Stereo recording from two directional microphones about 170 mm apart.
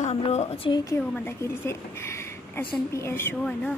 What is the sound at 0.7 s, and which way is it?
A woman's voice, 25° left (ahead or behind).